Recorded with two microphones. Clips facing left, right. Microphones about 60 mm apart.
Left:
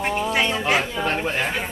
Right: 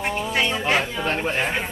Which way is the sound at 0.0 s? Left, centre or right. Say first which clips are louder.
Left 2 dB; centre.